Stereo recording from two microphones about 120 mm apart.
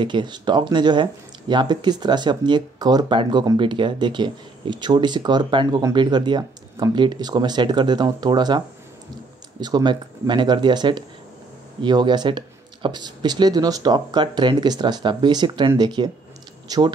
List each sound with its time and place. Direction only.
0.0 s speech: 40° right (ahead or behind)